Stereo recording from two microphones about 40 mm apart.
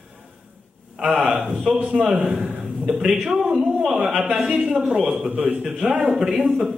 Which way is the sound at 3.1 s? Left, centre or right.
Centre.